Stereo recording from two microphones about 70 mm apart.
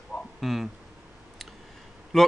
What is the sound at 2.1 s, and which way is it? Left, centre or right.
Speech, centre.